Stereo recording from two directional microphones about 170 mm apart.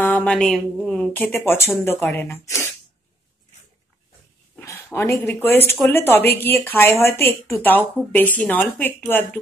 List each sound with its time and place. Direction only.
0.0 s speech: 10° left (ahead or behind)
4.6 s a sound: 15° left (ahead or behind)
4.9 s speech: 15° left (ahead or behind)